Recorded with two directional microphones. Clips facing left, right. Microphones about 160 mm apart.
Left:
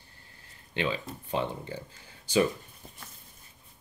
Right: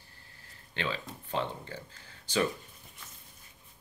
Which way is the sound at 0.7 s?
15° left (ahead or behind).